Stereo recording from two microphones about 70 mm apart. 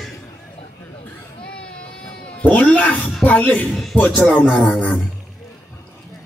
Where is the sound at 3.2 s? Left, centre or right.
Left.